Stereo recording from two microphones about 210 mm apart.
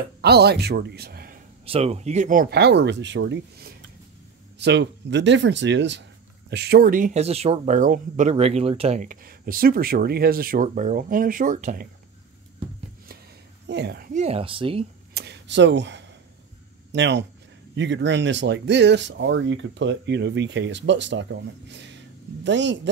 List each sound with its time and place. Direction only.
0.2 s a man's voice: 50° right (ahead or behind)
1.7 s speech: 30° right (ahead or behind)
13.7 s speech: 55° right (ahead or behind)
14.2 s speech: 25° right (ahead or behind)
15.1 s speech: 55° right (ahead or behind)